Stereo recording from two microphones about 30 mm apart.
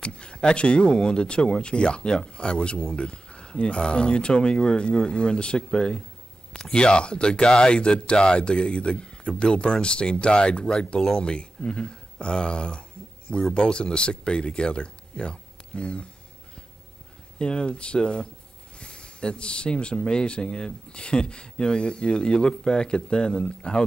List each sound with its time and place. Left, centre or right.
0.0 s speech: left
11.0 s speech: centre
11.2 s speech: left
17.4 s speech: left